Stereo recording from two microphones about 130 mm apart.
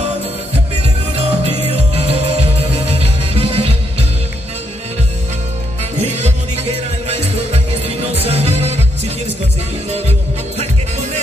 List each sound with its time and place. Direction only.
1.1 s music: 50° right (ahead or behind)
7.1 s music: 55° right (ahead or behind)